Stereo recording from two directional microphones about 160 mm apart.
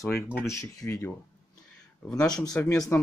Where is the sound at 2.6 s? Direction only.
15° left (ahead or behind).